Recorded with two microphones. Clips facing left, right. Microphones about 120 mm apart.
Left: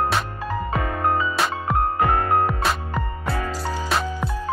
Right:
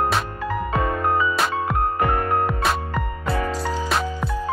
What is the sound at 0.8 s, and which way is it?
Music, 20° right (ahead or behind).